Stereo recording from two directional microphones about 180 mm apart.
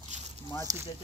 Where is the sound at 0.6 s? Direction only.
20° right (ahead or behind).